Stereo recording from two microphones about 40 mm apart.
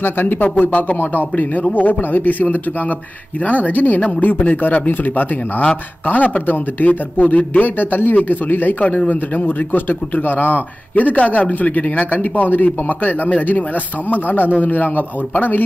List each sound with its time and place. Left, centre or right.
0.0 s speech: left
0.4 s a man's voice: left
7.7 s a man's voice: left
9.4 s a man's voice: left